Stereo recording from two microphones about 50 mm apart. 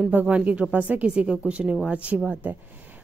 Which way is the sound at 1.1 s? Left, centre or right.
Right.